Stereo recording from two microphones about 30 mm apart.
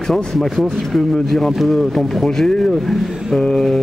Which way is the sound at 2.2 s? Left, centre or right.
Left.